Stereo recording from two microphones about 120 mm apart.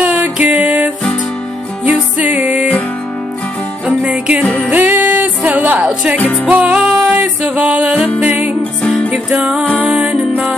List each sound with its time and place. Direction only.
0.0 s music: 15° right (ahead or behind)
3.8 s music: 10° right (ahead or behind)